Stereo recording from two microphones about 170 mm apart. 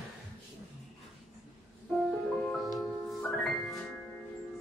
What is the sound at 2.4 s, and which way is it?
Music, centre (ahead or behind).